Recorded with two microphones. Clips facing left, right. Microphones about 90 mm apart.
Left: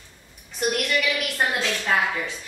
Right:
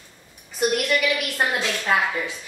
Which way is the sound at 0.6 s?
Centre (ahead or behind).